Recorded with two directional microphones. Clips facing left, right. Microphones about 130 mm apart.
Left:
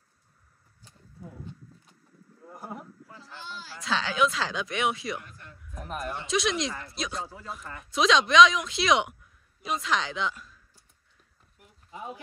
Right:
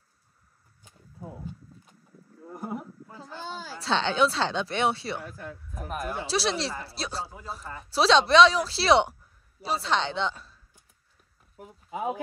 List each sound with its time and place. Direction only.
2.5 s a sound: centre (ahead or behind)
3.8 s speech: 30° right (ahead or behind)
5.7 s speech: 5° right (ahead or behind)
6.2 s a woman's voice: 35° right (ahead or behind)